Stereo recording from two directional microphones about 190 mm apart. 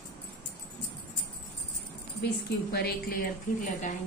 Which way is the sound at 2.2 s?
55° left (ahead or behind).